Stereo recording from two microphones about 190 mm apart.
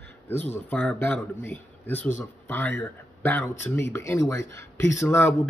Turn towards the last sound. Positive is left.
turn(degrees=10)  # may be behind; listen again after turning